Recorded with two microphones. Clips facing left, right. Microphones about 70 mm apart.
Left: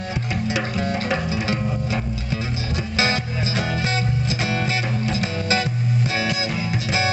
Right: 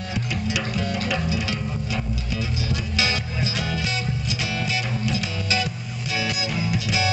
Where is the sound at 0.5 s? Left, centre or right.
Left.